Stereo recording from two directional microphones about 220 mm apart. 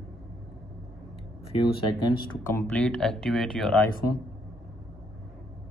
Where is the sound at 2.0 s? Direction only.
20° left (ahead or behind).